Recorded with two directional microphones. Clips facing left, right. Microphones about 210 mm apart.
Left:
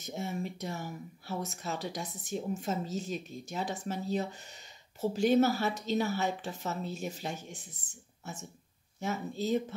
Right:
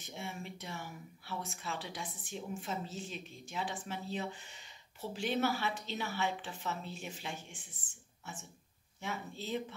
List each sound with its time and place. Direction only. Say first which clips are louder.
0.0 s speech: left 8 dB; 40° left (ahead or behind)